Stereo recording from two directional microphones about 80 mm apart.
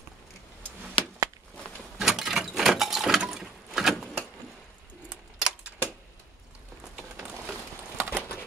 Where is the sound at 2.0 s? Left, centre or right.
Centre.